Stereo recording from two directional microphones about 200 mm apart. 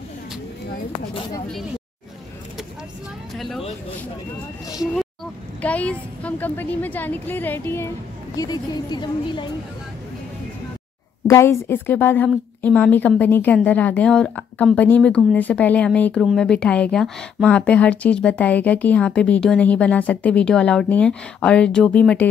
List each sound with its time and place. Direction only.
3.3 s vehicle: centre (ahead or behind)
4.9 s a woman's voice: 5° left (ahead or behind); by 9.5 s 20° left (ahead or behind)
11.2 s a woman's voice: 15° left (ahead or behind)